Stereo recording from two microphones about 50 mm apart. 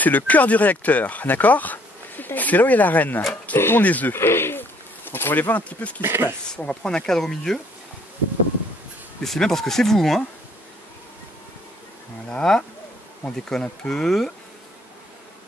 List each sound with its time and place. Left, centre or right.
0.0 s speech: left
3.5 s speech: left
3.8 s speech: left
4.1 s speech: left
5.9 s speech: right
6.5 s speech: centre
9.2 s speech: centre
12.3 s speech: centre